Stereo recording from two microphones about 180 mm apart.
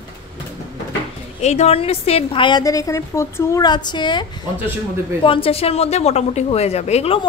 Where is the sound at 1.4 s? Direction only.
40° left (ahead or behind).